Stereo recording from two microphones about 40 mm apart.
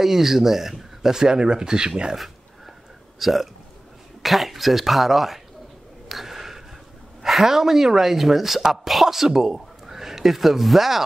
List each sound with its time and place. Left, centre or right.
0.0 s speech: centre
3.2 s speech: centre
6.0 s a sound: centre
7.2 s speech: centre